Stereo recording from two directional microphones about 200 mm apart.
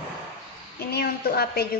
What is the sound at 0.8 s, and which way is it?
Speech, 50° left (ahead or behind).